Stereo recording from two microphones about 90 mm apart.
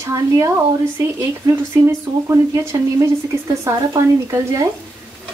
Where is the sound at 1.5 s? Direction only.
35° right (ahead or behind).